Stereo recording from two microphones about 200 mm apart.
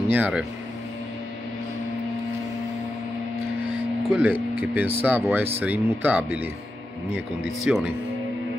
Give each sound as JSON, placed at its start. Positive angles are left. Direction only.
{"t": 0.1, "sound": "speech", "side_deg": -5}
{"t": 4.1, "sound": "speech", "side_deg": -10}
{"t": 7.7, "sound": "speech", "side_deg": -5}